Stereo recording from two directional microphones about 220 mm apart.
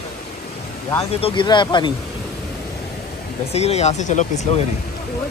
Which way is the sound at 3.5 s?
30° left (ahead or behind).